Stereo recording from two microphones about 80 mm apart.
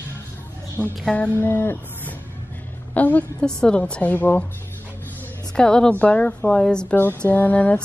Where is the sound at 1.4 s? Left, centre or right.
Left.